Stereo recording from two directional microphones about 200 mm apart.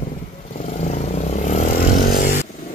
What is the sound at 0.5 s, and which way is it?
Vehicle, 35° left (ahead or behind).